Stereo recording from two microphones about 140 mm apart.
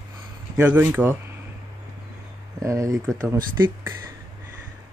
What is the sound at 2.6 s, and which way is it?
Speech, 20° right (ahead or behind).